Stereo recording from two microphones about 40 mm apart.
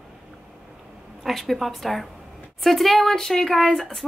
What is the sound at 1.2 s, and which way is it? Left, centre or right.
Speech, centre.